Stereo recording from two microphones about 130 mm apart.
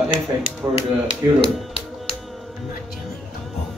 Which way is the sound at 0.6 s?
20° right (ahead or behind).